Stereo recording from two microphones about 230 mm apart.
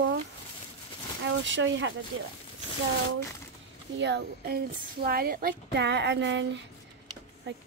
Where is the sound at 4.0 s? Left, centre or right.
Right.